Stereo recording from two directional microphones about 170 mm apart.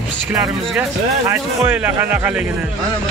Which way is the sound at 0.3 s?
5° right (ahead or behind).